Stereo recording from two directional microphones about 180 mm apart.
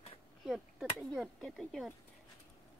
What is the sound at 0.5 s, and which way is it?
Speech, centre (ahead or behind).